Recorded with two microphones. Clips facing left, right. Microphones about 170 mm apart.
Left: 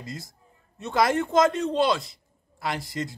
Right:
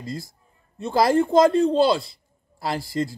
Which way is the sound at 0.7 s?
30° right (ahead or behind).